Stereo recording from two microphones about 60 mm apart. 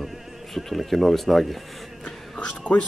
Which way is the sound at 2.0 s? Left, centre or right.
Centre.